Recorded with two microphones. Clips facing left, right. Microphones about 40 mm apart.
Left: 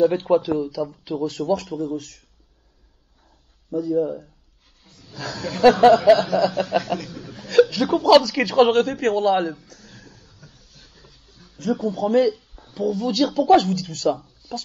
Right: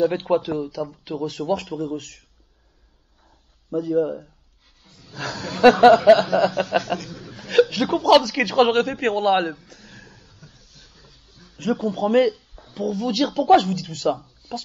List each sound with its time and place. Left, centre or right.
0.0 s speech: right
0.5 s speech: right
3.7 s speech: right
4.8 s a man's voice: right
7.1 s chuckle: right
7.7 s speech: right
9.7 s a sound: right
10.5 s train: centre
11.4 s speech: right